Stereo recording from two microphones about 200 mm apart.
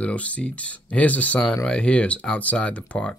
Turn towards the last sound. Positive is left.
turn(degrees=5)  # may be behind; listen again after turning